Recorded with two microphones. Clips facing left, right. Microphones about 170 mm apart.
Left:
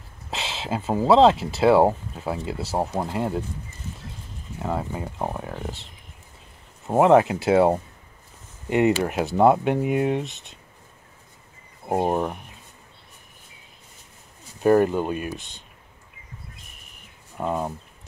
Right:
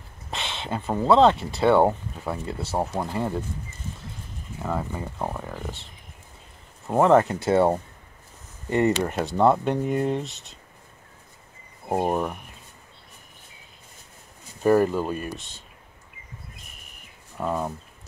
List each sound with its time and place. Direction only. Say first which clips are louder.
0.3 s a sound: left 2 dB; 5° left (ahead or behind)
0.9 s speech: left 2 dB; 5° left (ahead or behind)
4.6 s speech: left 1 dB; 10° left (ahead or behind)
7.1 s speech: left 2 dB; 5° left (ahead or behind)
12.1 s speech: left 1 dB; 15° left (ahead or behind)
14.6 s speech: left 1 dB; centre (ahead or behind)
17.4 s speech: left 1 dB; 10° left (ahead or behind)